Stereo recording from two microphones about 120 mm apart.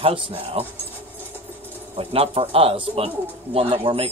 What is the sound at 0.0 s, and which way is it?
Speech, 50° right (ahead or behind).